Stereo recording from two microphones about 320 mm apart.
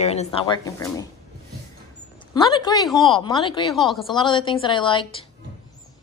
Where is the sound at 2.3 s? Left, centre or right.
Centre.